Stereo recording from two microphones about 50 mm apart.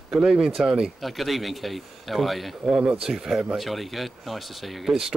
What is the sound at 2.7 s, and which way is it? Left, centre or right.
Speech, centre.